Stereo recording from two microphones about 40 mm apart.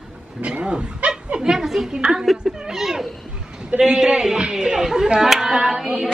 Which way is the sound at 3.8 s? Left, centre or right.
Right.